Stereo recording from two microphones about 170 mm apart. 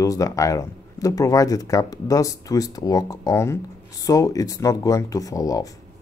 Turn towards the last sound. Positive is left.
turn(degrees=20)  # may be behind; listen again after turning